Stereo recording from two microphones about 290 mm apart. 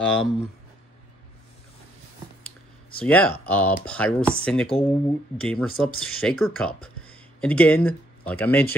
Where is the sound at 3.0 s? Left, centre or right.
Centre.